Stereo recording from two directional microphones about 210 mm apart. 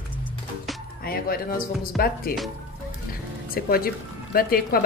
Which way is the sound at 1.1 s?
45° left (ahead or behind).